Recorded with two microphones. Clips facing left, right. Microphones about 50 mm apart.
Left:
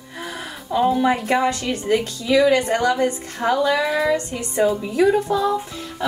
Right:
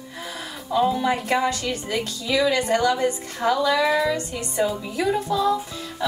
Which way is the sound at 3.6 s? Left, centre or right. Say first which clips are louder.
Left 1 dB; left.